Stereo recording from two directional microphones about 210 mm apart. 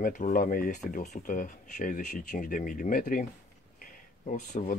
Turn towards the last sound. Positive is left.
turn(degrees=40)  # may be behind; listen again after turning